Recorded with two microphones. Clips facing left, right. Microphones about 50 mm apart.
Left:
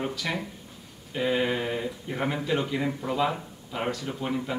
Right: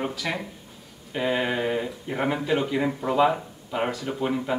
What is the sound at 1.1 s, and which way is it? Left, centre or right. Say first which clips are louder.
Speech: right 1 dB; centre.